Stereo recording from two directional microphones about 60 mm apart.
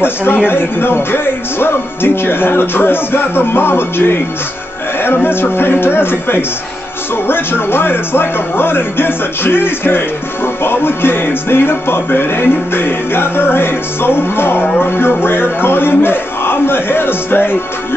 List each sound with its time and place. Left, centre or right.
0.0 s speech: left